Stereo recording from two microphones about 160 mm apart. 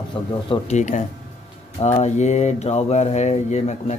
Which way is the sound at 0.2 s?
30° left (ahead or behind).